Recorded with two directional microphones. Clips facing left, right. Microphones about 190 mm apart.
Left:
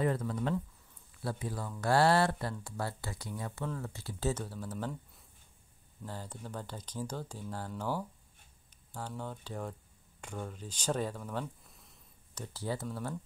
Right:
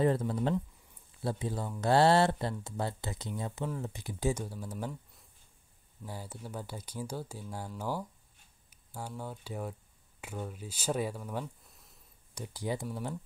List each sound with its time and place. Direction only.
0.0 s speech: 30° right (ahead or behind); by 4.9 s 10° right (ahead or behind)
6.0 s speech: 10° right (ahead or behind)
11.4 s a sound: centre (ahead or behind)
12.4 s speech: 15° right (ahead or behind)